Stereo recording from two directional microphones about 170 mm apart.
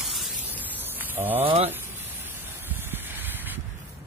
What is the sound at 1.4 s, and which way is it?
Speech, 35° right (ahead or behind).